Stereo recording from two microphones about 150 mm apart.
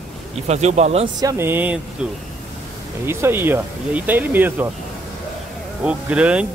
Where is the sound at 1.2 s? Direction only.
20° right (ahead or behind).